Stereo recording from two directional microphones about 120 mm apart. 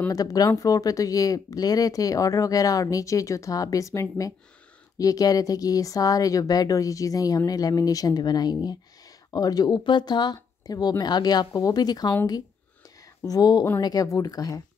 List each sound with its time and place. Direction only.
0.1 s speech: 30° left (ahead or behind)
13.2 s speech: 30° left (ahead or behind)